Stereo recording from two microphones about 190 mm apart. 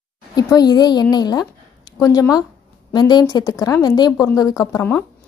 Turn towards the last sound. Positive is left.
turn(degrees=15)  # may be behind; listen again after turning